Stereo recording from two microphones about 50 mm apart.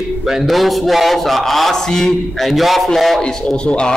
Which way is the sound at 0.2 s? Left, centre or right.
Centre.